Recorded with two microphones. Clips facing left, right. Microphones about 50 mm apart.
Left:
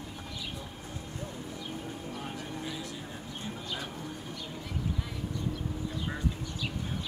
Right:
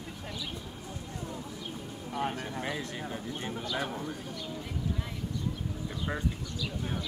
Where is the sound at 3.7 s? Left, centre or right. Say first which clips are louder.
Right 7 dB; right.